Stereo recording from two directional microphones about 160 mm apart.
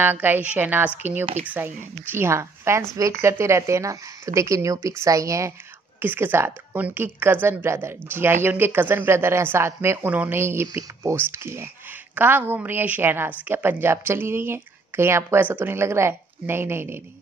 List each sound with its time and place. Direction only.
0.0 s a woman's voice: 10° right (ahead or behind)